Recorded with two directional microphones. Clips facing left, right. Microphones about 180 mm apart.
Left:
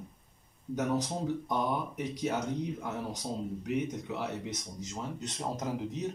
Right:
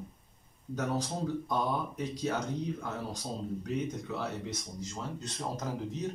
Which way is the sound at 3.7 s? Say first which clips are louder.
Left 2 dB; 15° left (ahead or behind).